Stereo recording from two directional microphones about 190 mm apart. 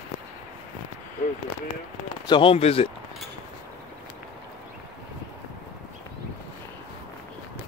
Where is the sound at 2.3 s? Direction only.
30° left (ahead or behind).